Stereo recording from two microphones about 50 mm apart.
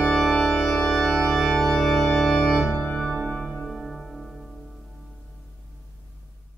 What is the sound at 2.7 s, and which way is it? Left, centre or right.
Music, left.